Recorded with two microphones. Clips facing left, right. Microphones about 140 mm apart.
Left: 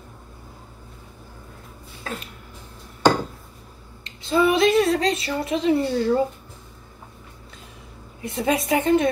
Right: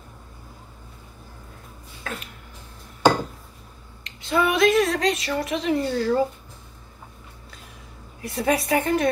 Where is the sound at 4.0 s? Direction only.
30° left (ahead or behind).